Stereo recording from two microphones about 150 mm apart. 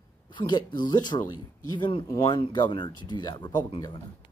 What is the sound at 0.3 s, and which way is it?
Speech, 30° left (ahead or behind).